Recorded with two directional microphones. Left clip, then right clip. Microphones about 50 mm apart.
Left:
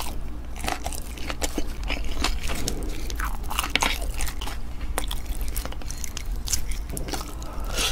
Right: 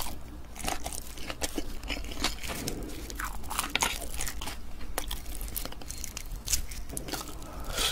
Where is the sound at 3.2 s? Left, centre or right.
Right.